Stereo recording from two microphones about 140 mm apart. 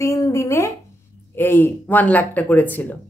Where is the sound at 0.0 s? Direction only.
20° left (ahead or behind).